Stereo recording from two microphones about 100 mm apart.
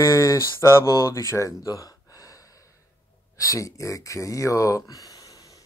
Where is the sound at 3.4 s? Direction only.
30° left (ahead or behind).